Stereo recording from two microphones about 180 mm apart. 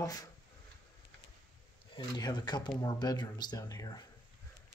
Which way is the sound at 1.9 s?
25° left (ahead or behind).